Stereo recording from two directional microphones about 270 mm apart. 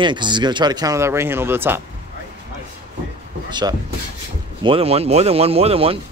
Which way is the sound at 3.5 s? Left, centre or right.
Centre.